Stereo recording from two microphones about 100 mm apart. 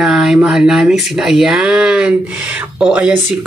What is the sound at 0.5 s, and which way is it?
A woman's voice, 5° right (ahead or behind).